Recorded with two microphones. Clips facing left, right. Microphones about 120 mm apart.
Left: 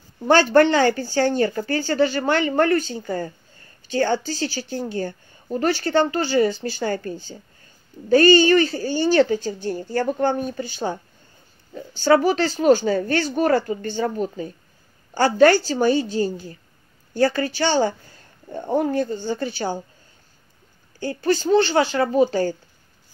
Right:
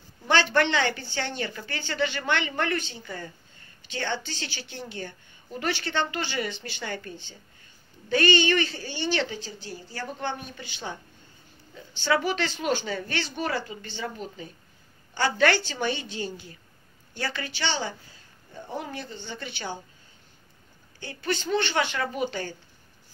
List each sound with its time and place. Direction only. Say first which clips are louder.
0.2 s a woman's voice: left 9 dB; 45° left (ahead or behind)
18.5 s speech: left 13 dB; 55° left (ahead or behind); by 19.8 s 40° left (ahead or behind)
21.0 s a woman's voice: left 9 dB; 40° left (ahead or behind)